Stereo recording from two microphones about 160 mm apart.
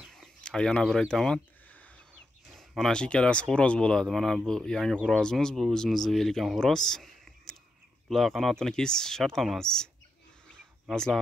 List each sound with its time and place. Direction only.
0.0 s a sound: centre (ahead or behind)
2.5 s speech: centre (ahead or behind)
10.9 s speech: 5° left (ahead or behind)